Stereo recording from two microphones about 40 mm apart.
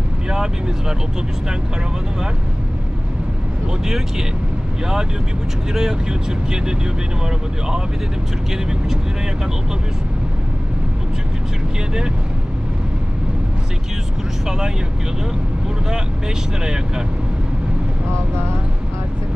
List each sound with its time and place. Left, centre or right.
0.3 s speech: centre
5.8 s speech: centre